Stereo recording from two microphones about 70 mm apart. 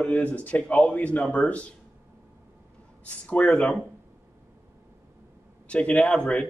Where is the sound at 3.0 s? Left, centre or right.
Left.